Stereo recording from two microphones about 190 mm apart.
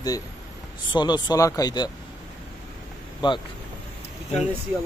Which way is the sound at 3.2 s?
25° left (ahead or behind).